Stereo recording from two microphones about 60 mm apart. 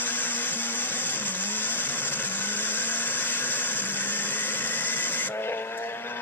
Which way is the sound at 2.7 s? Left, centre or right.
Left.